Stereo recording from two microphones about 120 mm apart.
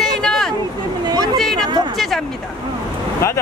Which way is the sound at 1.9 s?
Centre (ahead or behind).